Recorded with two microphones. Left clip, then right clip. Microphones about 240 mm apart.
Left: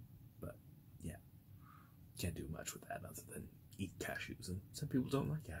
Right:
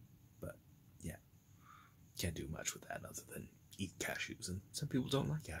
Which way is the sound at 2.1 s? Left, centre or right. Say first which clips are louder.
Right 3 dB; centre.